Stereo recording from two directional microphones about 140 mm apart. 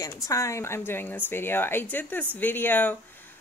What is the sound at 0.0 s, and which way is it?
Speech, 25° left (ahead or behind).